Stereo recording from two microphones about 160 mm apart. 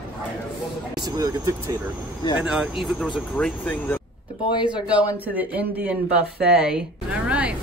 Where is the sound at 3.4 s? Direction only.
10° left (ahead or behind).